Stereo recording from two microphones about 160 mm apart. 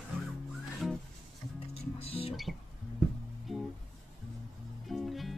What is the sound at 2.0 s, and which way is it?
Speech, 35° left (ahead or behind).